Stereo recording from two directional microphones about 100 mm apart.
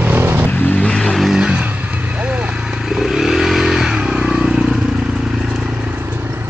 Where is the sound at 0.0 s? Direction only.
20° right (ahead or behind).